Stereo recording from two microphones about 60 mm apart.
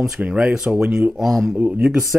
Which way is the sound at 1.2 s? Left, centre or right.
Centre.